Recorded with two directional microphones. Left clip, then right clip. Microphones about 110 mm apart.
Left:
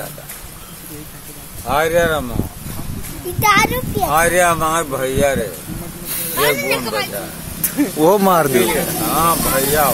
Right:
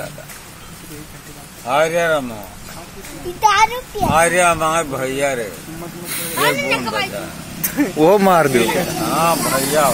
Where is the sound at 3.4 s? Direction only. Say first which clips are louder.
Even; 50° left (ahead or behind).